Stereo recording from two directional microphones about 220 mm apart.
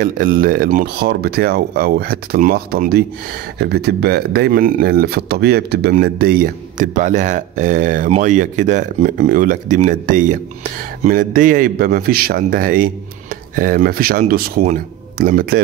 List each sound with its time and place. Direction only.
0.0 s speech: 40° right (ahead or behind)